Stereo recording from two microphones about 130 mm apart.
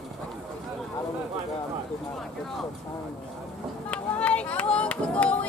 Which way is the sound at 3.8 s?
10° left (ahead or behind).